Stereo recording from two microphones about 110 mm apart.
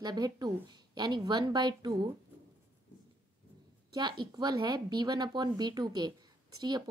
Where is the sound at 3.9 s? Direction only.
45° right (ahead or behind).